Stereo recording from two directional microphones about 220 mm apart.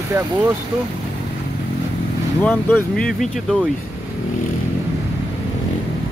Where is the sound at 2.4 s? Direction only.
10° left (ahead or behind).